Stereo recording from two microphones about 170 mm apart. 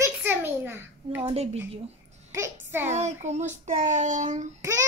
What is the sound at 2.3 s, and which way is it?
Speech, 15° right (ahead or behind).